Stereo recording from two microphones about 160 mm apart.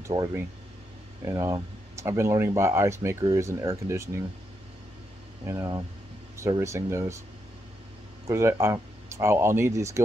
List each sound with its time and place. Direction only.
0.0 s speech: 20° right (ahead or behind)
5.4 s speech: 20° right (ahead or behind)
8.3 s speech: 20° right (ahead or behind)